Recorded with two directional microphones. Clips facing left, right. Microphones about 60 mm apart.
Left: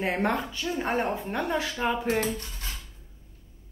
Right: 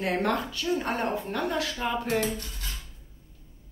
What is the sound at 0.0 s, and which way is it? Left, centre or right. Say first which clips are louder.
A woman's voice: even; left.